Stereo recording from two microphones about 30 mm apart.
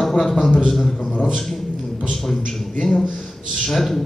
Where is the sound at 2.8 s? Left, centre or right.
Centre.